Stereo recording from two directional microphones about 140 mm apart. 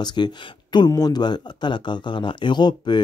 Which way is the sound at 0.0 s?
30° left (ahead or behind).